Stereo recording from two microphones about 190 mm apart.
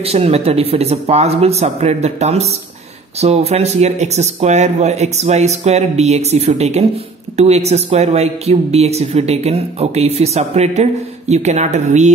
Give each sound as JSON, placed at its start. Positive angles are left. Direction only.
{"t": 0.0, "sound": "speech", "side_deg": -30}